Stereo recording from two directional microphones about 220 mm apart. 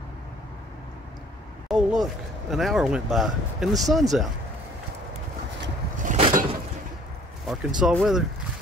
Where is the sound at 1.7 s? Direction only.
Centre (ahead or behind).